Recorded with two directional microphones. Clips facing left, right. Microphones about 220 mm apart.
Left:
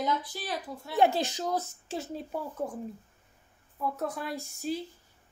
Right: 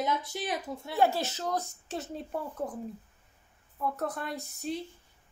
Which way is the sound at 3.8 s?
Centre (ahead or behind).